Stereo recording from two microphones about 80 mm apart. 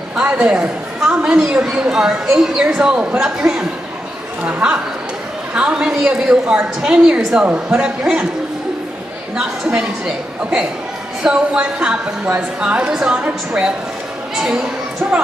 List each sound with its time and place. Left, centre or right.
0.2 s a man's voice: centre
9.4 s a man's voice: centre